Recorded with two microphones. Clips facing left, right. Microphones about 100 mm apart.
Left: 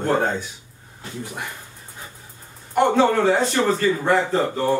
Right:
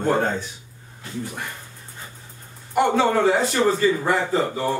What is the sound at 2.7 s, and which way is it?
Speech, 5° right (ahead or behind).